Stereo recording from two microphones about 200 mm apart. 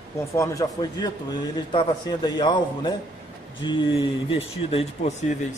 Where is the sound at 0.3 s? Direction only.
15° left (ahead or behind).